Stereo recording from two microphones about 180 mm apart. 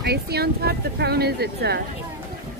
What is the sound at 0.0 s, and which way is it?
Speech, 65° right (ahead or behind).